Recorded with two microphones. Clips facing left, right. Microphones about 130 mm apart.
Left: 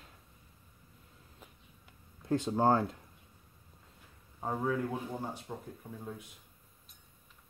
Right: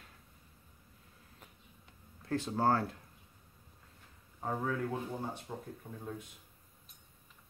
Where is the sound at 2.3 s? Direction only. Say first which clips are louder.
Left 3 dB; 20° left (ahead or behind).